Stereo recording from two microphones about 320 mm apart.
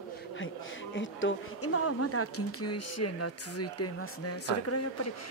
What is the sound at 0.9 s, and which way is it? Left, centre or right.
Speech, left.